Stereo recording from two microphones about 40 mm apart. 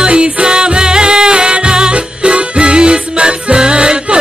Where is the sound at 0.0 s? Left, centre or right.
Right.